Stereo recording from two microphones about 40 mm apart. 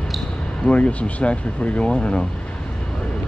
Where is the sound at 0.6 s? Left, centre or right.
Left.